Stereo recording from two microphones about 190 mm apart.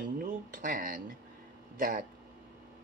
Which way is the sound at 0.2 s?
45° right (ahead or behind).